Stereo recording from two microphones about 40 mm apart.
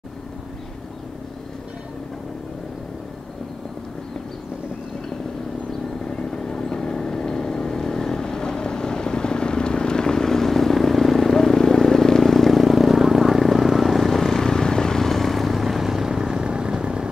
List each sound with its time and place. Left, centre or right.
6.0 s vehicle: left; by 17.1 s right